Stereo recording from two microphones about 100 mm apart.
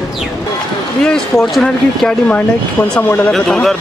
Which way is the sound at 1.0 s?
5° left (ahead or behind).